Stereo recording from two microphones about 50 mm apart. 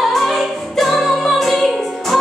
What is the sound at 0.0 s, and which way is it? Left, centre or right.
Music, centre.